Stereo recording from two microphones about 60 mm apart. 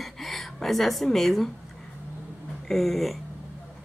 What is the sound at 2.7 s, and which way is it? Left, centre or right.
Speech, centre.